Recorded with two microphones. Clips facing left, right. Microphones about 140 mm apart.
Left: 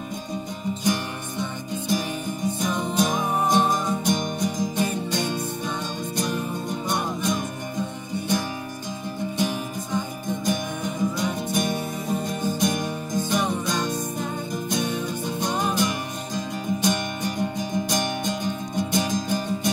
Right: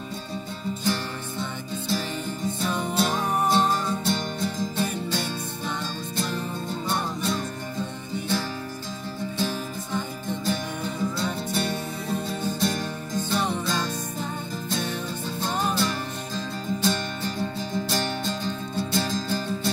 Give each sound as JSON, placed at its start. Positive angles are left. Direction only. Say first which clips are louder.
{"t": 1.4, "sound": "music", "louder": "left 4 dB", "side_deg": 15}
{"t": 9.4, "sound": "music", "louder": "left 2 dB", "side_deg": 15}